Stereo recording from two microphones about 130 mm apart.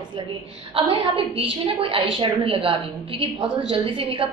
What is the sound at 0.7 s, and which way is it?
A woman's voice, 45° right (ahead or behind).